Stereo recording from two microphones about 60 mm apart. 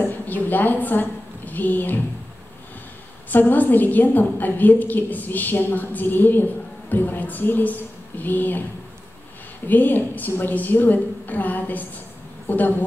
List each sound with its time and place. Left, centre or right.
0.0 s a woman's voice: left
3.3 s a woman's voice: left
9.7 s a woman's voice: left